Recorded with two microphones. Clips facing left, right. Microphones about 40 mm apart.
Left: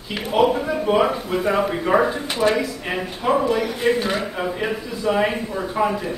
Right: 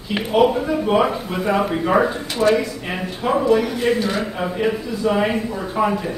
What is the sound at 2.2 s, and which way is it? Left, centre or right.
Speech, centre.